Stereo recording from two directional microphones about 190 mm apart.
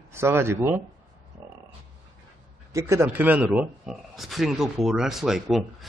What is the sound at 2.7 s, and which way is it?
A man's voice, 15° right (ahead or behind).